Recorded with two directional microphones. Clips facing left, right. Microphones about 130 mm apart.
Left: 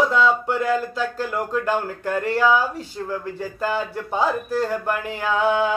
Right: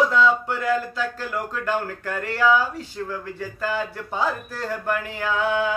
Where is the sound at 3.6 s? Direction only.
25° left (ahead or behind).